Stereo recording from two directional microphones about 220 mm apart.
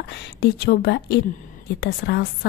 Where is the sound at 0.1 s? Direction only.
45° left (ahead or behind).